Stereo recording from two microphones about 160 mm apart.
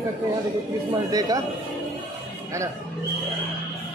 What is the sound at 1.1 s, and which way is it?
Speech, 25° right (ahead or behind).